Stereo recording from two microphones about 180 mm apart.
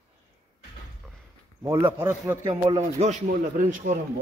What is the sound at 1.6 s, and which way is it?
Speech, 15° right (ahead or behind).